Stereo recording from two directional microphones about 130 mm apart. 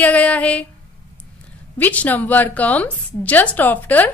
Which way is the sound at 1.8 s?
10° left (ahead or behind).